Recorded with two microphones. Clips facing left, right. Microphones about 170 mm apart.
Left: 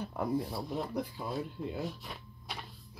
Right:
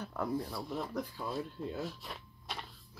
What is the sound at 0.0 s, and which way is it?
Speech, 15° left (ahead or behind).